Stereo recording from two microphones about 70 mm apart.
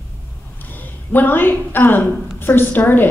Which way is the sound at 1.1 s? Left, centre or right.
Left.